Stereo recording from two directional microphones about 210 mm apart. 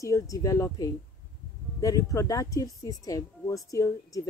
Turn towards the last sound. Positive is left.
turn(degrees=15)  # may be behind; listen again after turning